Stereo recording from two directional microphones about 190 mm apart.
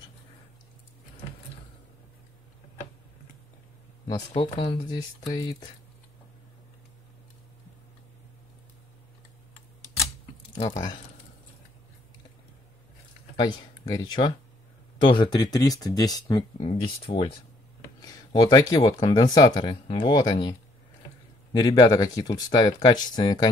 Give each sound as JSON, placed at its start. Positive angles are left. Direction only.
{"t": 4.3, "sound": "speech", "side_deg": 30}
{"t": 13.4, "sound": "speech", "side_deg": 20}
{"t": 21.5, "sound": "speech", "side_deg": 20}